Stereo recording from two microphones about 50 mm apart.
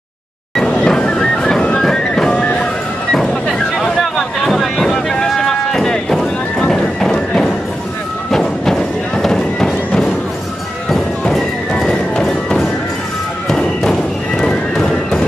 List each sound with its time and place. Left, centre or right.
0.6 s music: centre
3.2 s a sound: centre
8.3 s music: centre
11.3 s music: centre